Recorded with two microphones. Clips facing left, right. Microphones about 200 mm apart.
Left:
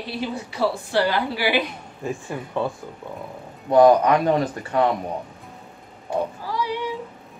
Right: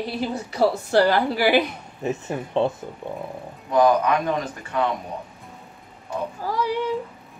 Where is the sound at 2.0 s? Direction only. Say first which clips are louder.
Right 3 dB; 20° right (ahead or behind).